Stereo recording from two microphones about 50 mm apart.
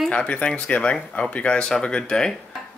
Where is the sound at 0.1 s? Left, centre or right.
Left.